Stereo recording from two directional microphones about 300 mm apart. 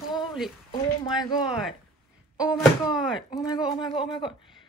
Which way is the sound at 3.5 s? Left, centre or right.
Centre.